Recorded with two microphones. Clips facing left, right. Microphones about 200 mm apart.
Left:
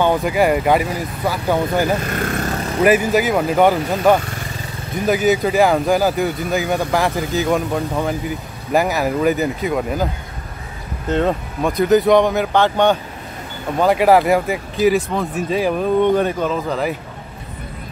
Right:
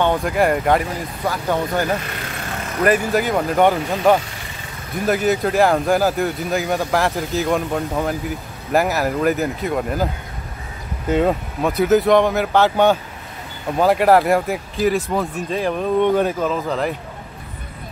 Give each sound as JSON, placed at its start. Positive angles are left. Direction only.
{"t": 0.0, "sound": "speech", "side_deg": 5}
{"t": 2.0, "sound": "vehicle", "side_deg": 50}
{"t": 2.8, "sound": "speech", "side_deg": 5}
{"t": 11.1, "sound": "speech", "side_deg": -5}